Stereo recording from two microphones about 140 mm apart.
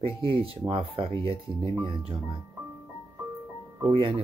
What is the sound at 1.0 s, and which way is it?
Speech, 40° right (ahead or behind).